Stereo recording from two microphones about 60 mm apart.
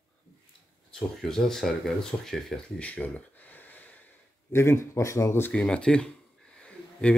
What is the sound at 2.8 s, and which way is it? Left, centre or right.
Speech, left.